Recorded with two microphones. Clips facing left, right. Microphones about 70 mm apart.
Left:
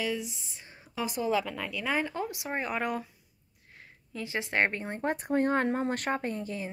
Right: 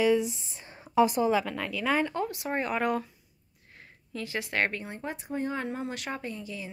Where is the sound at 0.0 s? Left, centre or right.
Right.